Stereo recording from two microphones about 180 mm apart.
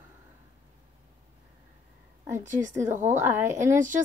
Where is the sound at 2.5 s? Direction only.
15° right (ahead or behind).